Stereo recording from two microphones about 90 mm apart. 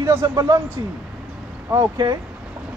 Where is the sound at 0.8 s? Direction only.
55° right (ahead or behind).